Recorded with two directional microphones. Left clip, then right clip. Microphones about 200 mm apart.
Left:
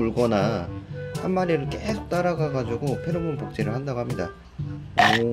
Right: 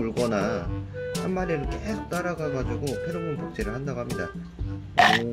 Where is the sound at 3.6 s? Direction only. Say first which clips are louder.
Left 5 dB; 20° left (ahead or behind).